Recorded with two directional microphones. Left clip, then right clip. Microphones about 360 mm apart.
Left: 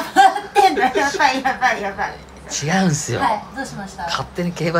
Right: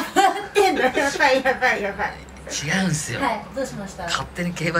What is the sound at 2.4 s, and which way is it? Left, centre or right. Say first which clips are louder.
Speech: left 4 dB; centre.